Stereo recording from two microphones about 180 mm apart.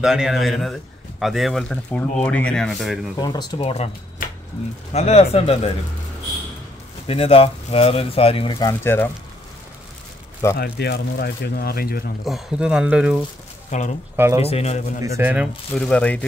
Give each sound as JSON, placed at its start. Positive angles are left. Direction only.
{"t": 0.0, "sound": "speech", "side_deg": -5}
{"t": 3.2, "sound": "speech", "side_deg": 25}
{"t": 4.9, "sound": "speech", "side_deg": 35}
{"t": 7.1, "sound": "speech", "side_deg": 30}
{"t": 10.6, "sound": "speech", "side_deg": 65}
{"t": 12.3, "sound": "speech", "side_deg": 0}
{"t": 13.7, "sound": "speech", "side_deg": 40}
{"t": 14.1, "sound": "speech", "side_deg": -15}
{"t": 14.4, "sound": "speech", "side_deg": 35}
{"t": 15.0, "sound": "speech", "side_deg": -15}
{"t": 15.7, "sound": "speech", "side_deg": 5}